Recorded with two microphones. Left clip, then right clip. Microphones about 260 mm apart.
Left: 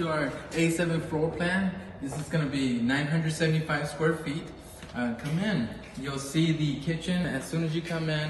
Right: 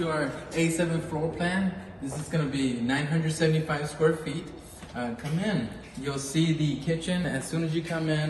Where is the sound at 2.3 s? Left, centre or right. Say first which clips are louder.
Even; centre.